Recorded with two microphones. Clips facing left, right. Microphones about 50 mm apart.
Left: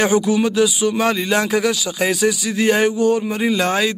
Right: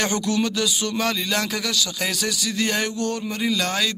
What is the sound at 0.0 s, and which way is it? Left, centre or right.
Speech, centre.